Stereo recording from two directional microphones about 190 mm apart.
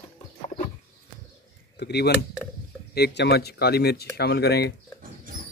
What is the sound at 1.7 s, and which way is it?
Speech, 60° left (ahead or behind).